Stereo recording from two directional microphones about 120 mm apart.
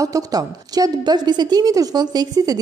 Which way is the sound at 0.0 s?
30° right (ahead or behind).